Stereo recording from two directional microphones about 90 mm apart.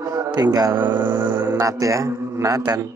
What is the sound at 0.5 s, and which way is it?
Speech, 45° right (ahead or behind).